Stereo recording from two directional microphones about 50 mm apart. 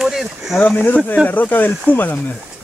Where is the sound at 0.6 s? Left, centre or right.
Left.